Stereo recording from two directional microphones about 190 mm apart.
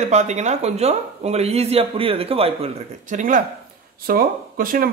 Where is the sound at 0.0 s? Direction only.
35° right (ahead or behind).